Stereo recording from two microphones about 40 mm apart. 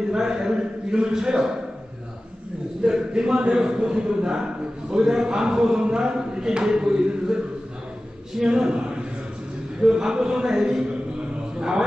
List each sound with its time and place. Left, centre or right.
0.1 s a man's voice: centre
2.8 s speech: centre
8.5 s a man's voice: right